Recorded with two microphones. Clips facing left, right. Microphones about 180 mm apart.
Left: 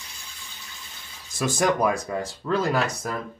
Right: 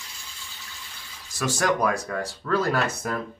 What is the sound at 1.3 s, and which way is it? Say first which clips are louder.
Speech: left 2 dB; 15° left (ahead or behind).